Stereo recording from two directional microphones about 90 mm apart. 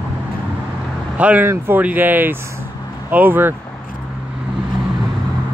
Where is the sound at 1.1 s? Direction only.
15° right (ahead or behind).